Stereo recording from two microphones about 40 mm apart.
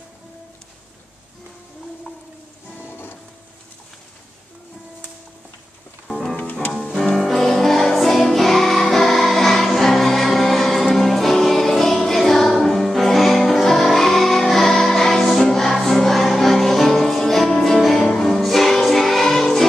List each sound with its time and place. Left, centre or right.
2.8 s music: left
6.8 s music: centre